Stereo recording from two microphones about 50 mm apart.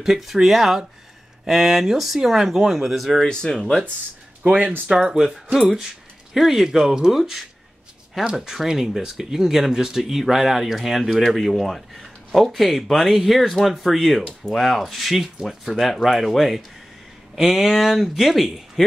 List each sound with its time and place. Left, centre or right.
0.0 s speech: centre
3.3 s speech: centre
4.4 s speech: right
5.1 s speech: centre